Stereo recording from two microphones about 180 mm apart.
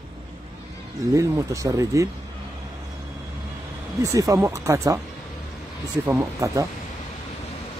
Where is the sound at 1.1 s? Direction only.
15° right (ahead or behind).